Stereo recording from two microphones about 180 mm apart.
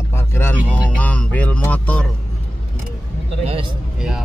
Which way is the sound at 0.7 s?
10° left (ahead or behind).